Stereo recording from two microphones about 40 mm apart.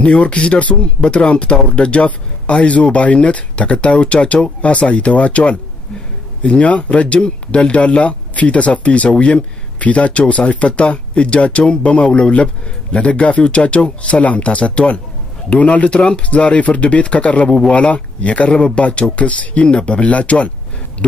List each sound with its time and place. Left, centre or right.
0.0 s speech: left
6.6 s speech: left
17.5 s speech: left
17.7 s speech: left